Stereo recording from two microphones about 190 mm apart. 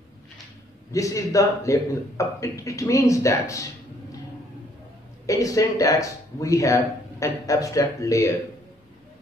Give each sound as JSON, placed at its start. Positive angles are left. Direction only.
{"t": 0.9, "sound": "speech", "side_deg": 15}
{"t": 5.2, "sound": "speech", "side_deg": 15}